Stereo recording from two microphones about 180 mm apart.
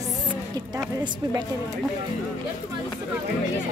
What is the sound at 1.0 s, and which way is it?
Speech, 20° right (ahead or behind).